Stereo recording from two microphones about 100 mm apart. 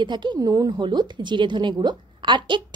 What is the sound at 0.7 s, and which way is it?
A woman's voice, 55° right (ahead or behind).